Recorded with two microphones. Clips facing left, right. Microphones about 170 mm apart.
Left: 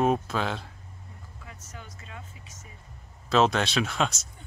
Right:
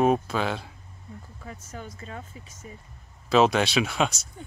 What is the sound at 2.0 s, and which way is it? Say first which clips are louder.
Speech: right 6 dB; 40° right (ahead or behind).